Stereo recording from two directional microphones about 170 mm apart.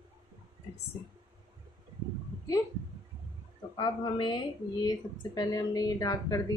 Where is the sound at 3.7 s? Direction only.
25° left (ahead or behind).